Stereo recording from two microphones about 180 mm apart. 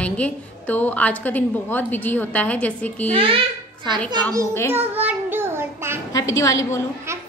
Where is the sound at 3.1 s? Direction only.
30° right (ahead or behind).